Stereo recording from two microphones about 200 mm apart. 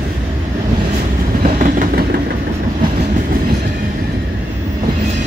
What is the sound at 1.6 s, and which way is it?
Train, 40° right (ahead or behind).